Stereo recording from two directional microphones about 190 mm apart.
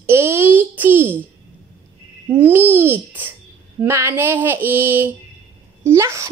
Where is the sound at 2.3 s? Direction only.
10° right (ahead or behind).